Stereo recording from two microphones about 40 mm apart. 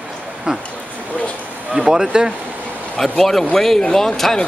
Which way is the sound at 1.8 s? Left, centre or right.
Centre.